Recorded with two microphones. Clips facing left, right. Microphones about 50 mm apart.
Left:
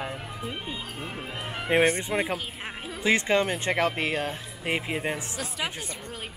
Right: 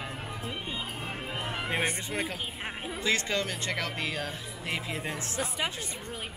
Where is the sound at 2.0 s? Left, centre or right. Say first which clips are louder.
Left 5 dB; left.